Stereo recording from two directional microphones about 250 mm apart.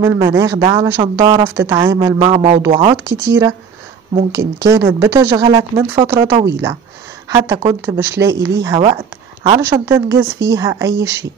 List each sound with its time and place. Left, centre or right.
0.0 s a woman's voice: centre
3.3 s a woman's voice: centre
4.6 s a woman's voice: centre
9.6 s a woman's voice: centre